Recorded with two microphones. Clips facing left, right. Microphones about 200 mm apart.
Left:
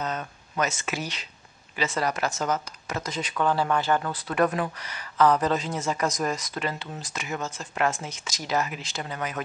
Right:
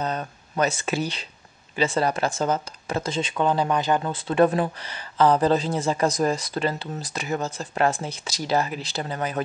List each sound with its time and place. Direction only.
0.0 s speech: 35° right (ahead or behind)